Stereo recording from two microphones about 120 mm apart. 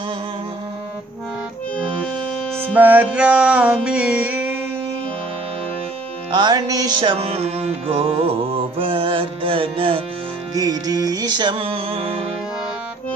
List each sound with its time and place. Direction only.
2.6 s music: 15° right (ahead or behind)
6.3 s music: 35° right (ahead or behind)
7.0 s music: 45° right (ahead or behind)
7.2 s music: 60° right (ahead or behind)
10.5 s music: 30° right (ahead or behind); by 12.2 s 50° right (ahead or behind)